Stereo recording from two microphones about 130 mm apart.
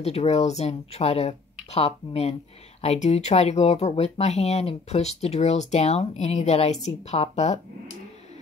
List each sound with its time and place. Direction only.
0.0 s speech: 55° left (ahead or behind)